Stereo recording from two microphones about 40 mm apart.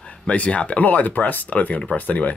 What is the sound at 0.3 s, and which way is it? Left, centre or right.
Speech, left.